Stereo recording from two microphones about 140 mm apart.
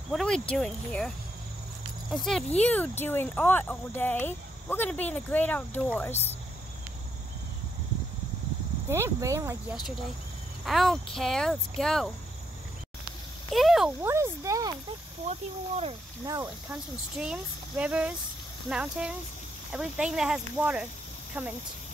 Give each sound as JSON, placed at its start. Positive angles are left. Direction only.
{"t": 0.1, "sound": "speech", "side_deg": 5}
{"t": 8.8, "sound": "speech", "side_deg": -20}
{"t": 10.6, "sound": "speech", "side_deg": 0}
{"t": 13.5, "sound": "a sound", "side_deg": 0}
{"t": 14.0, "sound": "speech", "side_deg": -20}
{"t": 15.2, "sound": "speech", "side_deg": -50}
{"t": 16.4, "sound": "speech", "side_deg": -5}